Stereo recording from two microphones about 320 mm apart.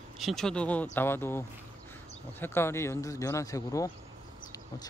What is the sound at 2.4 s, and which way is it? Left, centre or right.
Speech, centre.